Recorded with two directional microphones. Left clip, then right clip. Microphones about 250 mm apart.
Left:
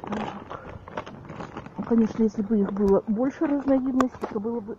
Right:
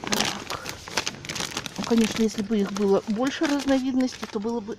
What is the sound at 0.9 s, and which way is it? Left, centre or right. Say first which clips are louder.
Crumpling: right 7 dB; right.